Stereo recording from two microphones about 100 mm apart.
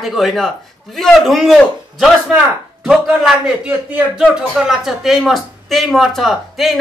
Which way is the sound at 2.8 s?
5° right (ahead or behind).